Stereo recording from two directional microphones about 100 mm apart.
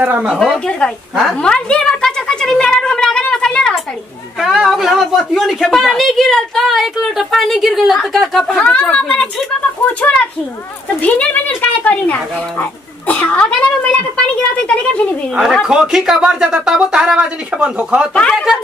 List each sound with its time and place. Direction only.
0.0 s speech: 15° right (ahead or behind)
0.3 s a woman's voice: centre (ahead or behind)
0.7 s a sound: 5° left (ahead or behind)
4.4 s a woman's voice: 5° right (ahead or behind)
8.5 s speech: 15° left (ahead or behind)
11.0 s speech: 15° left (ahead or behind)
15.6 s a woman's voice: 5° right (ahead or behind)